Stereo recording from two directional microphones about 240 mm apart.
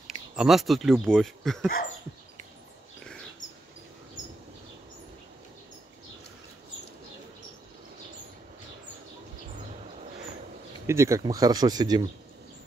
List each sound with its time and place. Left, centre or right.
0.0 s speech: centre
3.0 s dog: centre
10.9 s speech: centre